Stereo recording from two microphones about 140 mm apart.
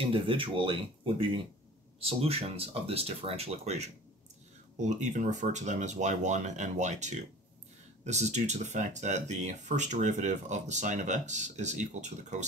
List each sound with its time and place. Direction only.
0.0 s speech: 40° right (ahead or behind); by 12.4 s 55° right (ahead or behind)